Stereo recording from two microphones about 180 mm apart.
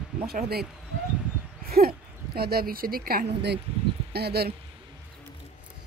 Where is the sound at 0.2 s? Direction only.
55° right (ahead or behind).